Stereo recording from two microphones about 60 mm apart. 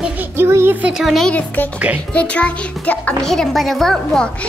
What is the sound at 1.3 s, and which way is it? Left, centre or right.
A child's voice, left.